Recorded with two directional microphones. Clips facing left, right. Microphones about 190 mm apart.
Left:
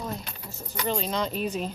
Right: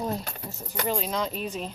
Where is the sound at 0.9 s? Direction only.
5° right (ahead or behind).